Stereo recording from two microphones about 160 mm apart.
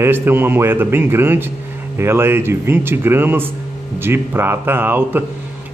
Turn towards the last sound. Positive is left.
turn(degrees=-10)  # may be behind; listen again after turning